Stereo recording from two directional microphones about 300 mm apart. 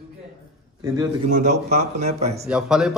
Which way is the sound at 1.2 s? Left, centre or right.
Right.